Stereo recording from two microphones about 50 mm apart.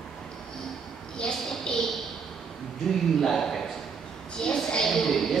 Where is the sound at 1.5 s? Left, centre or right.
Centre.